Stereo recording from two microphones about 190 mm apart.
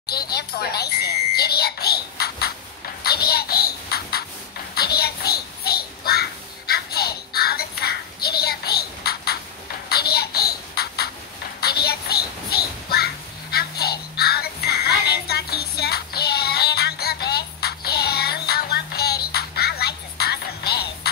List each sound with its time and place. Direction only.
0.1 s a child's voice: 55° left (ahead or behind)
6.7 s a sound: 55° left (ahead or behind)
11.6 s child singing: 55° left (ahead or behind)
19.3 s music: 55° left (ahead or behind)